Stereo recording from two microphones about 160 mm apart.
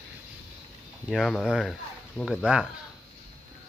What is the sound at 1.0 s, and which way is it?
Speech, centre (ahead or behind).